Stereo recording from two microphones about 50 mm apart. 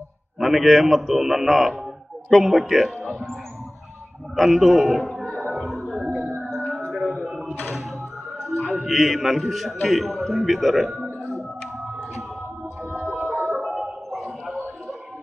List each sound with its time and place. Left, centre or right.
0.4 s a man's voice: centre
4.4 s a man's voice: centre
5.4 s music: centre
6.9 s a sound: centre
8.4 s a man's voice: centre
12.9 s music: right
13.7 s a sound: centre